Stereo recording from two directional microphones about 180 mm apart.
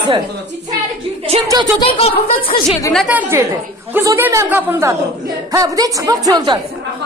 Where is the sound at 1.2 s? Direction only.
35° right (ahead or behind).